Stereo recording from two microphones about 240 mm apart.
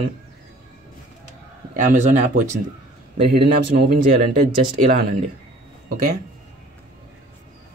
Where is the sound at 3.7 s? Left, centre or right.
Right.